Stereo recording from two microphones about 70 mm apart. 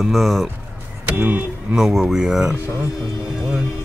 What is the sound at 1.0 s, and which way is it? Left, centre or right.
Speech, right.